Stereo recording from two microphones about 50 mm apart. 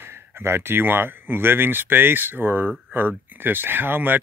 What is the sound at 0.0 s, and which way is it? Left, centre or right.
Speech, right.